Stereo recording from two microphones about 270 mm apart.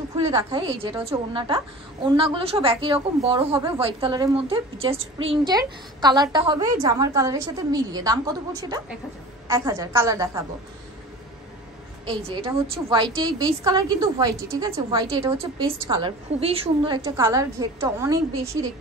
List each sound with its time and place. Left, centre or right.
0.2 s a woman's voice: centre
12.1 s a woman's voice: right